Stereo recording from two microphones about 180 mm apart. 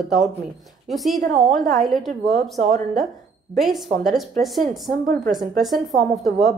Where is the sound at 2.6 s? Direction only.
40° right (ahead or behind).